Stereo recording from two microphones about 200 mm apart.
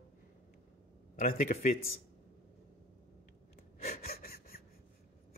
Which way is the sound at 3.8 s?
50° left (ahead or behind).